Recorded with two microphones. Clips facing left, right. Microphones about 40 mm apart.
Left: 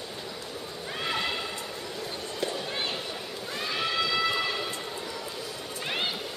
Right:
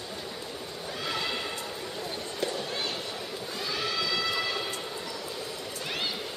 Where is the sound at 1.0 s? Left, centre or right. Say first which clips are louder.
Left 2 dB; left.